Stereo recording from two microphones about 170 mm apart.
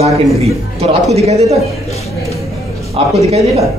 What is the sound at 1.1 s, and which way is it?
Speech, 40° right (ahead or behind).